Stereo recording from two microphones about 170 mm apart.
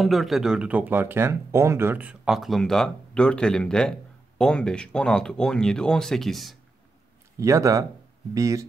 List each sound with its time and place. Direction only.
0.0 s speech: centre (ahead or behind)
7.3 s speech: 20° right (ahead or behind)